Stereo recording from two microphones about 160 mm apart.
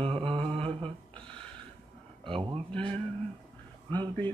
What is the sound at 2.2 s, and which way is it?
Speech, 30° right (ahead or behind).